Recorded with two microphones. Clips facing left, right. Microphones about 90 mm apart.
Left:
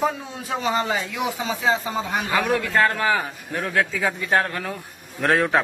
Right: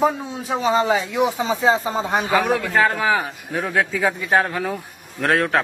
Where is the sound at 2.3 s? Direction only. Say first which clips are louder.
Right 1 dB; 10° right (ahead or behind).